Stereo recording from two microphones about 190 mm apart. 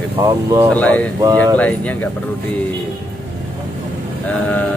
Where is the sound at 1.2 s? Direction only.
20° right (ahead or behind).